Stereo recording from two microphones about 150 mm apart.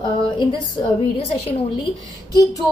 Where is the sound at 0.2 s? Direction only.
30° left (ahead or behind).